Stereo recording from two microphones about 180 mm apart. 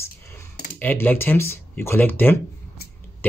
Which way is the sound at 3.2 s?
10° left (ahead or behind).